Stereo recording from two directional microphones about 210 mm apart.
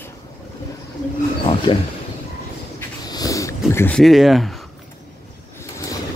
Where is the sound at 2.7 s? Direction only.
20° left (ahead or behind); by 4.5 s centre (ahead or behind).